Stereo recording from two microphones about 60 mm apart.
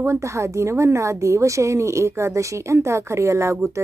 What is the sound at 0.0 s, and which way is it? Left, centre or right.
Speech, right.